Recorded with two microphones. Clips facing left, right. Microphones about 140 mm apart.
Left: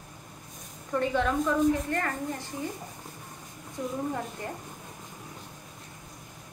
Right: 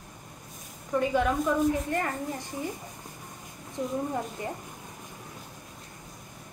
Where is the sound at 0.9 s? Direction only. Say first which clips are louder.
Right 1 dB; 10° right (ahead or behind).